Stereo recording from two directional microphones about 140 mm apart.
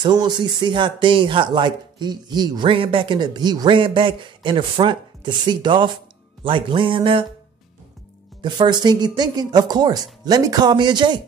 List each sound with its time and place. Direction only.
0.0 s speech: 30° right (ahead or behind)
8.4 s speech: 30° right (ahead or behind)